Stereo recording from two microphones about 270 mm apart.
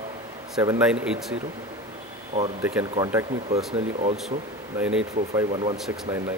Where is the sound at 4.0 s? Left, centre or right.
Right.